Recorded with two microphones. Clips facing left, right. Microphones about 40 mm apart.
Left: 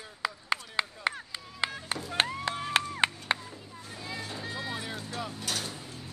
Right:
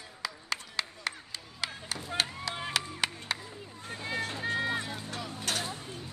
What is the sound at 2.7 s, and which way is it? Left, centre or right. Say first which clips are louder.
Chop: left 6 dB; left.